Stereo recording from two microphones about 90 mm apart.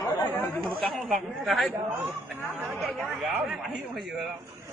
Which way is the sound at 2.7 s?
Centre (ahead or behind).